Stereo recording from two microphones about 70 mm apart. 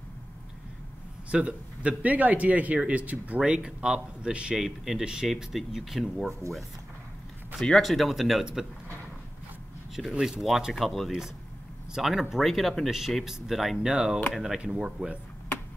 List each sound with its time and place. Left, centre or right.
1.3 s speech: centre
7.6 s speech: centre
10.1 s speech: centre
10.4 s speech: centre